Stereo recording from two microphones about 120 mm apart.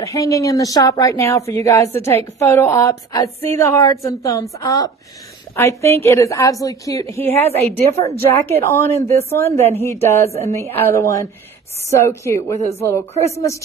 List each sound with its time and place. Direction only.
0.0 s a woman's voice: 30° left (ahead or behind)
7.4 s a woman's voice: 60° right (ahead or behind)
7.7 s a woman's voice: 25° left (ahead or behind)